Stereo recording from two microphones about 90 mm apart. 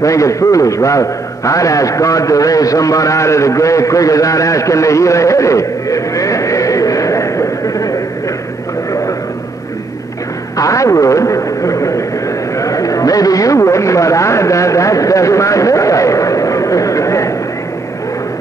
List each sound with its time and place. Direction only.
0.0 s a man's voice: 35° left (ahead or behind)
10.6 s radio: 35° left (ahead or behind)
12.5 s a sound: 40° left (ahead or behind)